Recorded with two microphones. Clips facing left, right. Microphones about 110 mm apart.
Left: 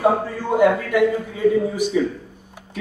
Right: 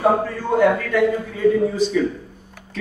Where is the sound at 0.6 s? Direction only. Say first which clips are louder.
Left 1 dB; 15° left (ahead or behind).